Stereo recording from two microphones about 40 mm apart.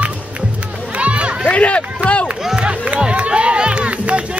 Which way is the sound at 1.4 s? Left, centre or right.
Left.